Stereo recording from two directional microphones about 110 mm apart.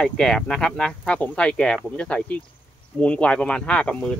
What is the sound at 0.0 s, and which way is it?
Speech, 5° left (ahead or behind).